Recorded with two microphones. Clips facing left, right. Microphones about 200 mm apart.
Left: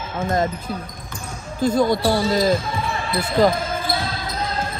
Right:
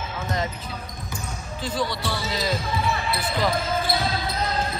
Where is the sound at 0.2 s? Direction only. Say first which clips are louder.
Left 8 dB; 50° left (ahead or behind).